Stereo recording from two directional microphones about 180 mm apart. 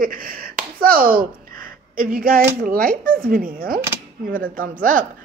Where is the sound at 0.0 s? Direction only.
50° right (ahead or behind).